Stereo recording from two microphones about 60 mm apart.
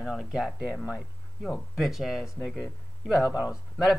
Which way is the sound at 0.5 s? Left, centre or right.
Right.